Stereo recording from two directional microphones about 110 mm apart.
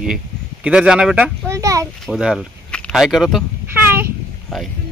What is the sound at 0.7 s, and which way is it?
Speech, 10° right (ahead or behind).